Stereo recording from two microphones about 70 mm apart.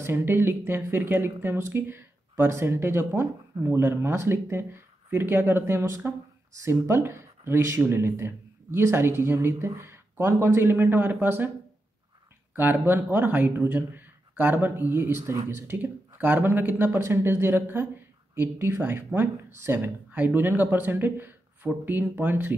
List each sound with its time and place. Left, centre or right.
0.0 s speech: right
12.5 s speech: right